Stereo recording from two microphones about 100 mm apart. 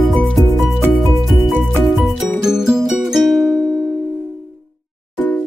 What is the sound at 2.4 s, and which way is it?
Music, 5° right (ahead or behind).